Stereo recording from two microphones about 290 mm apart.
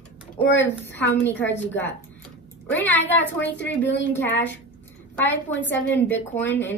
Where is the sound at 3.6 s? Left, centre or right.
Left.